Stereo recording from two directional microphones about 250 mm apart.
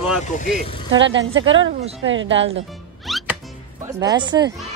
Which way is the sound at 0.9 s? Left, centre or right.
Right.